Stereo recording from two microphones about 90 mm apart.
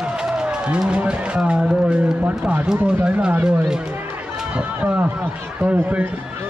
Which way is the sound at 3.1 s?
10° right (ahead or behind).